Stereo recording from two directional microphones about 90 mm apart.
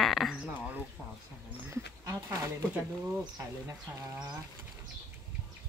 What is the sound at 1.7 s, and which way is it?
Dog, 35° right (ahead or behind).